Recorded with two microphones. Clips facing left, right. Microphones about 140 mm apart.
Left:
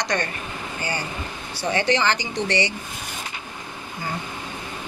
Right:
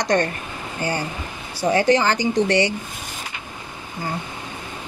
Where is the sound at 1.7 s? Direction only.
40° right (ahead or behind).